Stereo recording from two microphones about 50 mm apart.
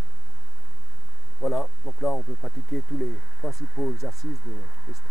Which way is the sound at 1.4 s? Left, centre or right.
Centre.